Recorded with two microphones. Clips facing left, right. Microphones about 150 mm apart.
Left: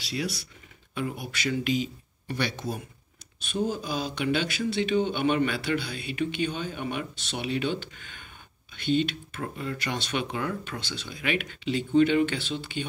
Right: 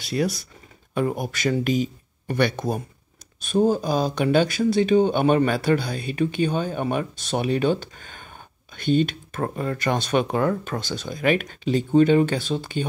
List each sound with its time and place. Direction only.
0.0 s speech: 50° right (ahead or behind)